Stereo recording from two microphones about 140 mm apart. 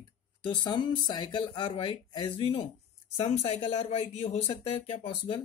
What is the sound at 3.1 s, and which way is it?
Speech, 45° left (ahead or behind).